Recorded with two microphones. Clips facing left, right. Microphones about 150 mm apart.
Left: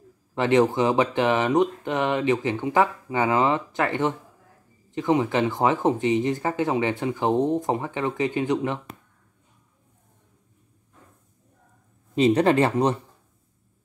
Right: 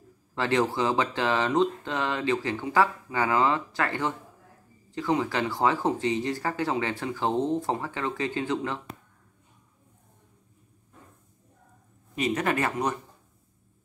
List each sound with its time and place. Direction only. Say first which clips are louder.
0.3 s speech: left 6 dB; 20° left (ahead or behind)
12.2 s speech: left 8 dB; 30° left (ahead or behind)